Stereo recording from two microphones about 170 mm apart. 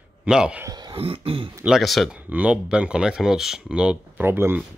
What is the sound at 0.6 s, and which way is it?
Throat clearing, 25° right (ahead or behind).